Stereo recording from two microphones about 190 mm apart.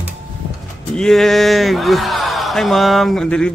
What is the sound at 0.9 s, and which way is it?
A man's voice, centre (ahead or behind).